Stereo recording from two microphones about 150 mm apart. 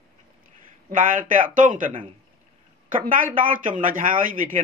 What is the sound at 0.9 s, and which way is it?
Speech, 60° right (ahead or behind).